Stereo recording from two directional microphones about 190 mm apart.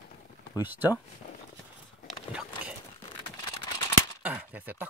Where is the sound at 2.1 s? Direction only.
5° right (ahead or behind).